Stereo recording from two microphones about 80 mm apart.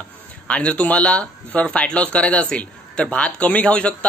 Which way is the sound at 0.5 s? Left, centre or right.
Centre.